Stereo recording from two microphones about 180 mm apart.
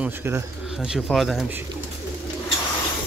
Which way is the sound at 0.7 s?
Centre (ahead or behind).